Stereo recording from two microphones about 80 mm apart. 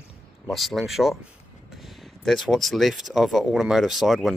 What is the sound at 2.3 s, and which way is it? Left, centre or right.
Speech, centre.